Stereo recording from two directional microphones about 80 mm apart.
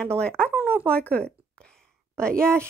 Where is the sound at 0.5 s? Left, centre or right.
Right.